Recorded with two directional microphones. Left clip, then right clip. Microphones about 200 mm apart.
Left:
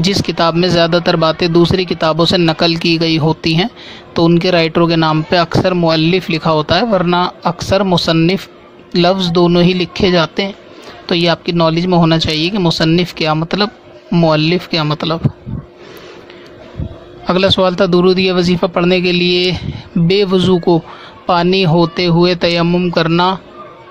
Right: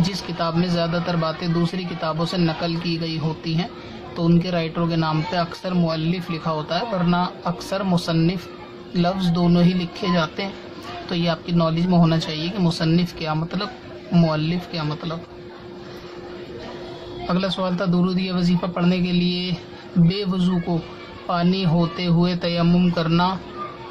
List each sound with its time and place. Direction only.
0.0 s speech: 45° left (ahead or behind)
17.3 s speech: 45° left (ahead or behind)